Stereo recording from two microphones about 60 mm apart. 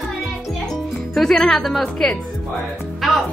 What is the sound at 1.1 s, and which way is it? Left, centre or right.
Speech, centre.